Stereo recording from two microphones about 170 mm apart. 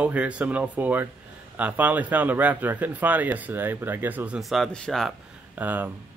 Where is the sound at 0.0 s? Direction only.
10° right (ahead or behind).